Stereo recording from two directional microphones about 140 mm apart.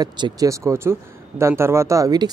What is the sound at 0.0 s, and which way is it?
A man's voice, 25° right (ahead or behind).